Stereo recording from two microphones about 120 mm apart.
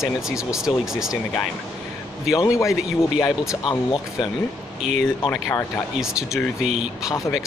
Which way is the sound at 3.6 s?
50° left (ahead or behind).